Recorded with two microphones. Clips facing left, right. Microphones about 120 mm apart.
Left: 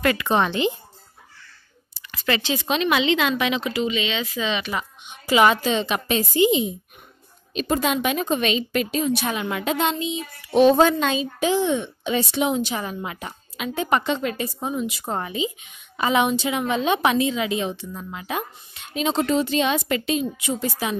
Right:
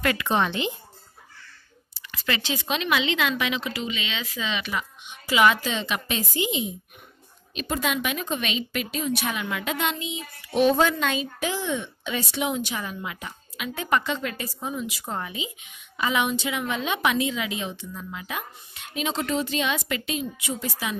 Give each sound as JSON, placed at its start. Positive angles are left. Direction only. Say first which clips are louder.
{"t": 0.0, "sound": "a woman's voice", "louder": "left 3 dB", "side_deg": 35}
{"t": 2.0, "sound": "a woman's voice", "louder": "left 4 dB", "side_deg": 35}
{"t": 15.1, "sound": "a woman's voice", "louder": "left 8 dB", "side_deg": 35}